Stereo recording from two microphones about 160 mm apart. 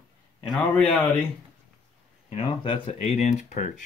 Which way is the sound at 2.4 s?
35° left (ahead or behind).